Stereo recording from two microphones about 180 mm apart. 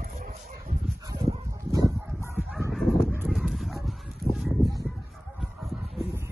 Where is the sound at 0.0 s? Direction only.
55° right (ahead or behind).